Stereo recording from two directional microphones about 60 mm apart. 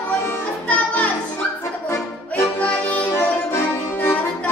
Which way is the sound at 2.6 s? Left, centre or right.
Left.